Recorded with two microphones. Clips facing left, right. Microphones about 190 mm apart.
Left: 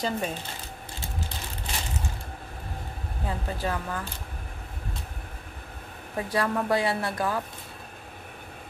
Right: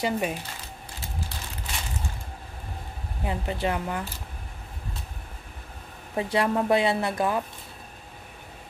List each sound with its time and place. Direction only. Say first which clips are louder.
0.0 s speech: right 2 dB; 10° right (ahead or behind)
3.3 s speech: right 3 dB; 20° right (ahead or behind)
6.1 s speech: right 3 dB; 20° right (ahead or behind)